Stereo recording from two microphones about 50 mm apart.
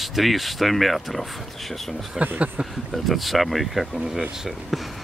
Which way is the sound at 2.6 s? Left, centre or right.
Centre.